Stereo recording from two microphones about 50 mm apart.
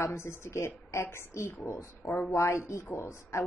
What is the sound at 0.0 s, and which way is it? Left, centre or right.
A woman's voice, left.